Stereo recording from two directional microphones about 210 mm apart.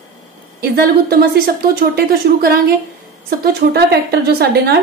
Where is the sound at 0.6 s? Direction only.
50° right (ahead or behind).